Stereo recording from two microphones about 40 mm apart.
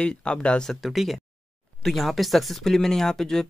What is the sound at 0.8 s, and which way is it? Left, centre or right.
Speech, centre.